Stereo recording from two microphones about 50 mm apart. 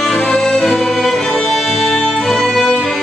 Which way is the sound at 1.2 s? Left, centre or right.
Centre.